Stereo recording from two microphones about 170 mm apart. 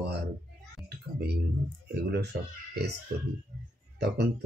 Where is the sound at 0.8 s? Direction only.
75° right (ahead or behind).